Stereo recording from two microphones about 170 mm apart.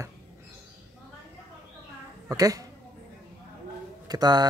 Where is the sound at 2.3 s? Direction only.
20° right (ahead or behind).